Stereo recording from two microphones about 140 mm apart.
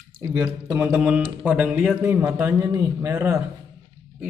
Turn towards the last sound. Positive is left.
turn(degrees=-20)  # may be behind; listen again after turning